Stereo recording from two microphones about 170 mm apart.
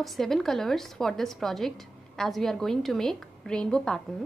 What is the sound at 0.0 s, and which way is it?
Speech, centre (ahead or behind).